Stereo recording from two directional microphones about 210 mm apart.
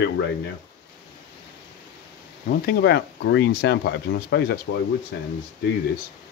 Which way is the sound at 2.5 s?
50° left (ahead or behind).